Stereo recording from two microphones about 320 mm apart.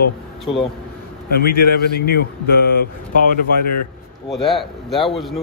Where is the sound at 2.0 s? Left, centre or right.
Left.